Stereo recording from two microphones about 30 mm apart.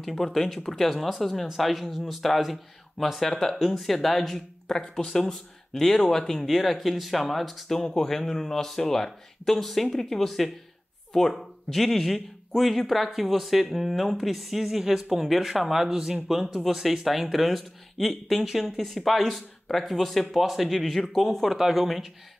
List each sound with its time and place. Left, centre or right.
0.1 s speech: centre
0.8 s speech: centre
1.2 s speech: centre
4.6 s speech: centre
6.5 s speech: centre
7.7 s speech: centre
21.5 s speech: centre